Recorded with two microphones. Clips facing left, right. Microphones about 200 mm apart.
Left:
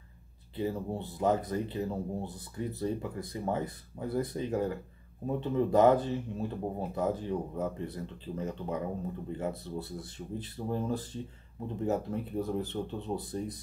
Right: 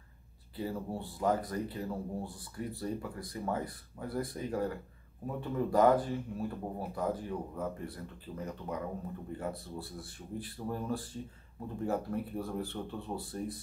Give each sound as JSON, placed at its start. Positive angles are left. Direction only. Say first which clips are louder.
{"t": 0.6, "sound": "speech", "louder": "left 4 dB", "side_deg": 20}